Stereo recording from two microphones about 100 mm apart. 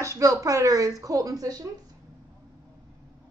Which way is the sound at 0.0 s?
30° right (ahead or behind).